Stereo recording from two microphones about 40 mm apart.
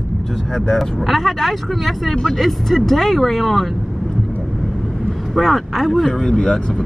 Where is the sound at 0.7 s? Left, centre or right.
Centre.